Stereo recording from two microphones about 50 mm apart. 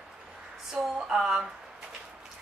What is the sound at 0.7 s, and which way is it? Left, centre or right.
Speech, centre.